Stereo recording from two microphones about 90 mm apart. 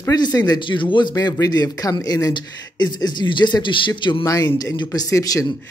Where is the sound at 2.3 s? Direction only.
55° left (ahead or behind).